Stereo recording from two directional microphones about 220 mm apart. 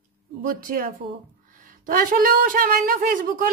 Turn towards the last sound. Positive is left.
turn(degrees=-40)  # may be behind; listen again after turning